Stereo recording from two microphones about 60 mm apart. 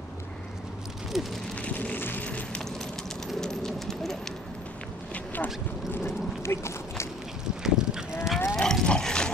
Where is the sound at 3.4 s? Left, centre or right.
Centre.